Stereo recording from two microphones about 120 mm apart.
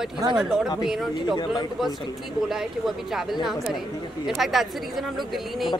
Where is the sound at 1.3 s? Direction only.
35° left (ahead or behind).